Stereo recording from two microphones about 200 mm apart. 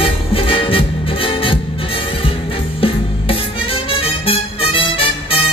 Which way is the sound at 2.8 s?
25° left (ahead or behind).